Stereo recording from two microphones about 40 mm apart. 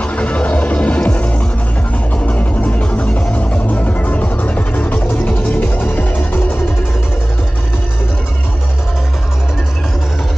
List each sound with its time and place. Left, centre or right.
0.0 s music: left